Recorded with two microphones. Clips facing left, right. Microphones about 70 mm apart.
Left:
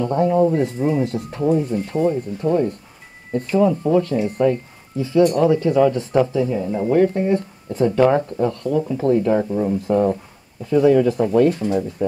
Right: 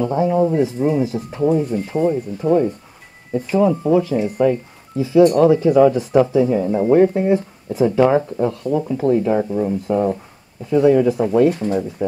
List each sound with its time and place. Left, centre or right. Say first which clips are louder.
0.0 s speech: even; centre
6.3 s speech: right 5 dB; right
7.2 s speech: right 2 dB; centre